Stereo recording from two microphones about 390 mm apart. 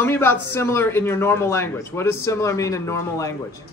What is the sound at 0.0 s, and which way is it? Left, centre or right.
A man's voice, centre.